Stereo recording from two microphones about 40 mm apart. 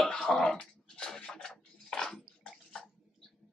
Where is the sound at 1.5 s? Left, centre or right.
Centre.